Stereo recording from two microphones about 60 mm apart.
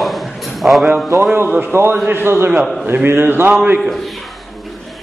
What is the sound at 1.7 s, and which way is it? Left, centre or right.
A man's voice, right.